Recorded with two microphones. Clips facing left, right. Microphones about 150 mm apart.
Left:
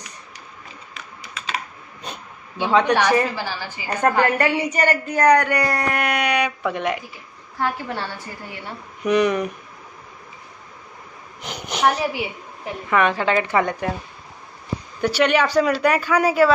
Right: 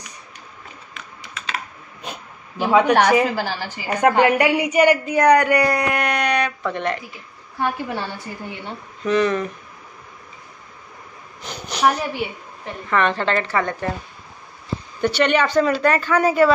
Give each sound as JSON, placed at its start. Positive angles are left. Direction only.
{"t": 2.6, "sound": "a woman's voice", "side_deg": -10}
{"t": 7.5, "sound": "a woman's voice", "side_deg": -15}
{"t": 9.0, "sound": "a woman's voice", "side_deg": 15}
{"t": 11.4, "sound": "a sound", "side_deg": 15}
{"t": 11.8, "sound": "a woman's voice", "side_deg": 5}
{"t": 15.0, "sound": "a woman's voice", "side_deg": 5}